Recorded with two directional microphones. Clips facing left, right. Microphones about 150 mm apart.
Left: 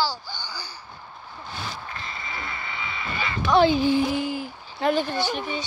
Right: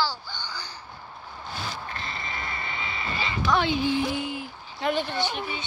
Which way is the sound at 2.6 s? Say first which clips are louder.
Even; 30° right (ahead or behind).